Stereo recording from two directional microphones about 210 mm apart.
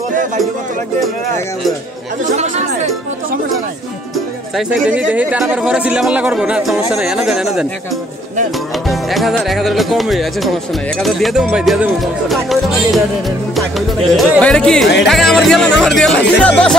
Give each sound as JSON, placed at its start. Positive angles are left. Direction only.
{"t": 2.2, "sound": "speech", "side_deg": -35}
{"t": 4.6, "sound": "speech", "side_deg": -5}
{"t": 8.8, "sound": "speech", "side_deg": 0}